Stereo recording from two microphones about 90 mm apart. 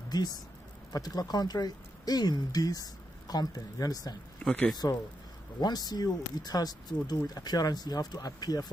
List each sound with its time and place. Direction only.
0.1 s speech: 50° left (ahead or behind)
4.4 s speech: 15° left (ahead or behind)
5.6 s speech: 50° left (ahead or behind)